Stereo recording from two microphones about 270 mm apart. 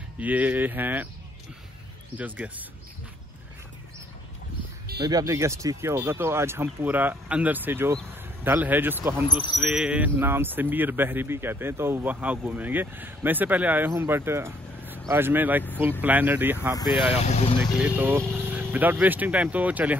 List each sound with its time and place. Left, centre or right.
0.2 s speech: centre
2.1 s speech: centre
5.0 s speech: centre
9.3 s speech: centre
9.6 s speech: centre
16.7 s speech: centre
17.6 s speech: centre